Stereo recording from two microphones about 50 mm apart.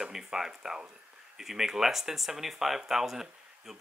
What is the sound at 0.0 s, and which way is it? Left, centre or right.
Speech, centre.